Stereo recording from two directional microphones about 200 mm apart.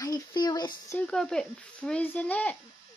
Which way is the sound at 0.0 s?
20° left (ahead or behind).